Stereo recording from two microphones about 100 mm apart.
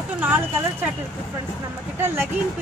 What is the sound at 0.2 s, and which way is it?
Speech, 15° right (ahead or behind).